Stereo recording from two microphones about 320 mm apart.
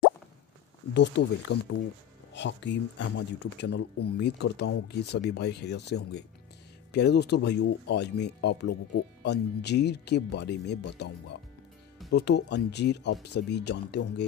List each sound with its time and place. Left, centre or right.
0.9 s speech: left